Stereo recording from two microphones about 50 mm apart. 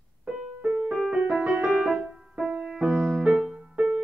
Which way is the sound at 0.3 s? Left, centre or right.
Centre.